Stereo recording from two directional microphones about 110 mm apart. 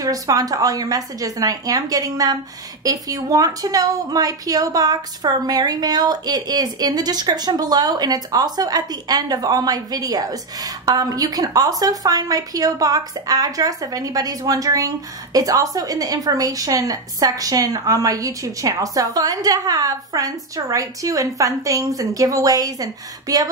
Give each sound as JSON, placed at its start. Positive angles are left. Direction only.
{"t": 0.0, "sound": "a woman's voice", "side_deg": -35}